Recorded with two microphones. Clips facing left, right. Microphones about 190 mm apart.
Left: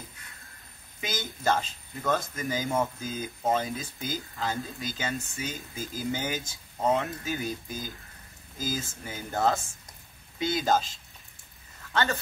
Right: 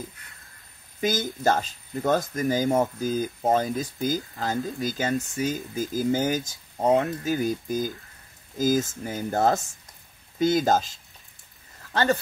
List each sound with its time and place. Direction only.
1.0 s speech: 45° right (ahead or behind)